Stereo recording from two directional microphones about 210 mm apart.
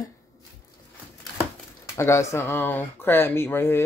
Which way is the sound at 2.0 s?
15° left (ahead or behind).